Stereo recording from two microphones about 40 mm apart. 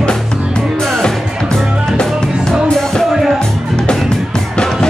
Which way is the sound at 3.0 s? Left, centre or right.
Centre.